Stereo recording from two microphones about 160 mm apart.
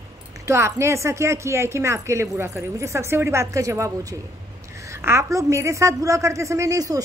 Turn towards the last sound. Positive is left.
turn(degrees=-20)  # may be behind; listen again after turning